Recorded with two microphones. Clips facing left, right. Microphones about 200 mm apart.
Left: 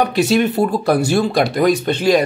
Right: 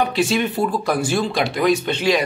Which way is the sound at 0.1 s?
40° left (ahead or behind).